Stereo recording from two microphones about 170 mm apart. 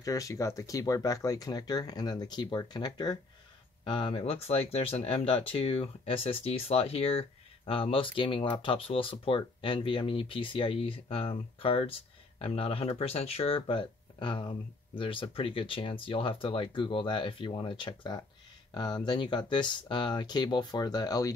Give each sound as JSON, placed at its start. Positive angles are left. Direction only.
{"t": 0.0, "sound": "speech", "side_deg": 20}